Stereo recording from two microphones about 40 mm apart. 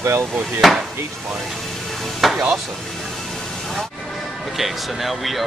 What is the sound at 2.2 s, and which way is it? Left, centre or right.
Speech, centre.